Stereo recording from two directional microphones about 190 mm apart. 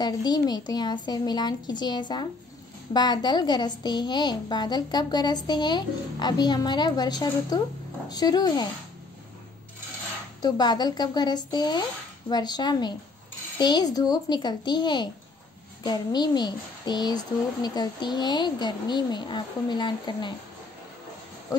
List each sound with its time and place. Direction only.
0.0 s a woman's voice: 20° left (ahead or behind)
10.4 s a woman's voice: 20° left (ahead or behind)